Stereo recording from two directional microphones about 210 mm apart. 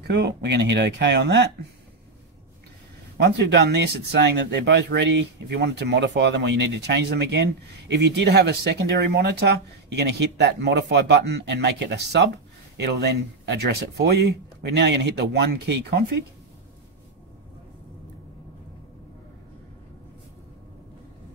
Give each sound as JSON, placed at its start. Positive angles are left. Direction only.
{"t": 0.0, "sound": "speech", "side_deg": -55}
{"t": 3.2, "sound": "speech", "side_deg": -55}